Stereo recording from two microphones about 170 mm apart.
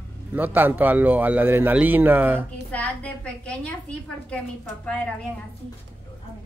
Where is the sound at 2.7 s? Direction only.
10° left (ahead or behind).